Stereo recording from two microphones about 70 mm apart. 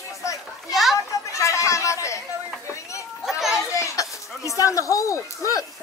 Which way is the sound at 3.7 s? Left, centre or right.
Left.